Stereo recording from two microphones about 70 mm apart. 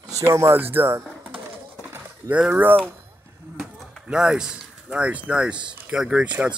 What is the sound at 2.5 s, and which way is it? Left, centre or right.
Speech, right.